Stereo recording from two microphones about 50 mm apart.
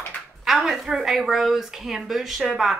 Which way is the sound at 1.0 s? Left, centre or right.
Centre.